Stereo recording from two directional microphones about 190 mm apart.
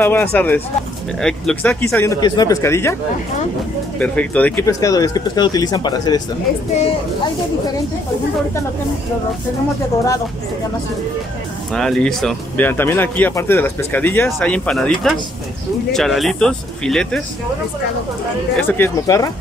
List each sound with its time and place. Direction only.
0.0 s speech: 10° left (ahead or behind)
4.0 s speech: 5° left (ahead or behind)
11.7 s speech: 5° left (ahead or behind)
18.6 s speech: 10° left (ahead or behind)